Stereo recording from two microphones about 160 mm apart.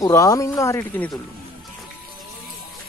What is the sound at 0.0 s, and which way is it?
Speech, 20° left (ahead or behind).